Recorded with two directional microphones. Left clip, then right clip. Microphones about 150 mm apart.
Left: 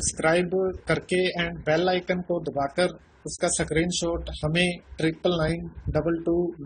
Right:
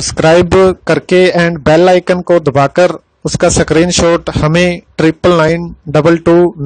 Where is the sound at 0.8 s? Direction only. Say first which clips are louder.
Right 16 dB; 60° right (ahead or behind).